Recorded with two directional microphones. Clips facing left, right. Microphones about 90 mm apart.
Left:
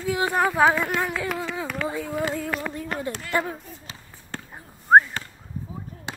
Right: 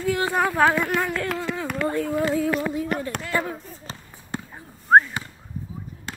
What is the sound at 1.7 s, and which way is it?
Speech, 5° left (ahead or behind).